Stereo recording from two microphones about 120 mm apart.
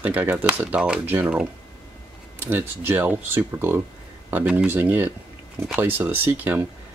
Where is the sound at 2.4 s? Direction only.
15° right (ahead or behind).